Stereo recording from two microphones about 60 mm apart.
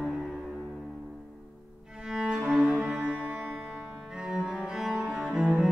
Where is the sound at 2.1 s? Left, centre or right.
Centre.